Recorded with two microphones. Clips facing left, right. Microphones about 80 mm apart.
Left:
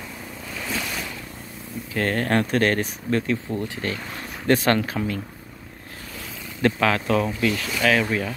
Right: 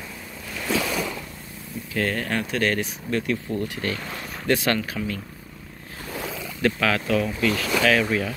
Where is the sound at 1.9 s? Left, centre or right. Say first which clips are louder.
Left 3 dB; left.